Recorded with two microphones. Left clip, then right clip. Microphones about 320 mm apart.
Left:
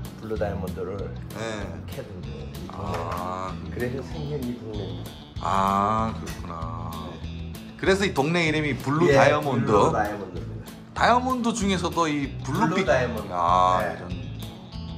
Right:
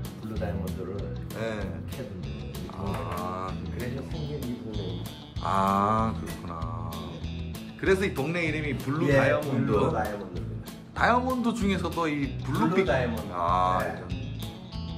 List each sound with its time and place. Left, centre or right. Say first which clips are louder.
1.4 s speech: left 1 dB; centre
2.8 s speech: left 4 dB; centre
7.8 s speech: left 3 dB; centre
11.0 s speech: left 3 dB; centre